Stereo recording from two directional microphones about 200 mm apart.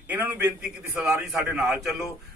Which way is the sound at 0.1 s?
10° right (ahead or behind).